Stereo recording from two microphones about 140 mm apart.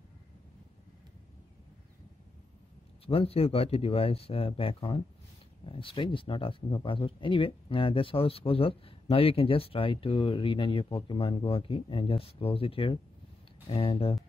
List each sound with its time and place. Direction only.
3.1 s speech: 45° left (ahead or behind)